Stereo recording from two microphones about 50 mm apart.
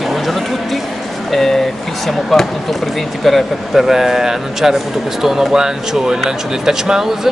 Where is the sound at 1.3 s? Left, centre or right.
Centre.